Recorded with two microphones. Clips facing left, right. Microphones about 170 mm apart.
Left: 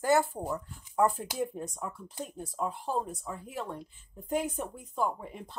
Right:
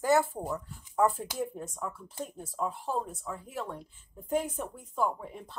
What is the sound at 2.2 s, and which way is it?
Speech, 5° right (ahead or behind).